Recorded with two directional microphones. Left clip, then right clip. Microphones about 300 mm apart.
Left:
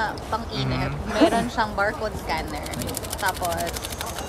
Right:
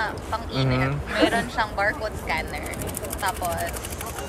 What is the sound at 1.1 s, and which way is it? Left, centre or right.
A woman's voice, left.